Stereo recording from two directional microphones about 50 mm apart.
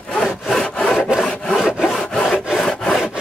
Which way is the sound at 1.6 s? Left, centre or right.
Centre.